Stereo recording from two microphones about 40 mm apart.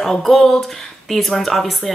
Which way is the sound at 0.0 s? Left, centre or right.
Centre.